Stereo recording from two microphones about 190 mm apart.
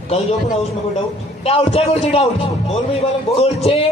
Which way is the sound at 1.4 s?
35° left (ahead or behind).